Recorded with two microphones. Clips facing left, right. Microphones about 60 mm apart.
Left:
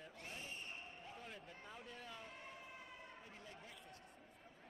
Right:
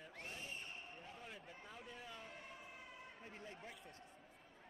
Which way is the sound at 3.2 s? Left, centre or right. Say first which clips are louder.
Right 3 dB; right.